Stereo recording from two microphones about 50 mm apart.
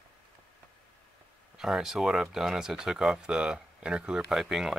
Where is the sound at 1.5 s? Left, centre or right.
Centre.